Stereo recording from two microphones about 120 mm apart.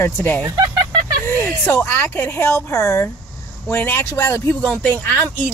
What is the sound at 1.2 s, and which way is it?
Speech, 20° left (ahead or behind).